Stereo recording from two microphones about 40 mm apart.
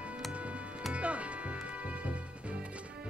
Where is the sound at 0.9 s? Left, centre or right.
Right.